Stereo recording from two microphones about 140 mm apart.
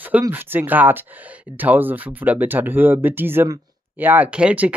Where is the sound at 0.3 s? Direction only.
15° right (ahead or behind).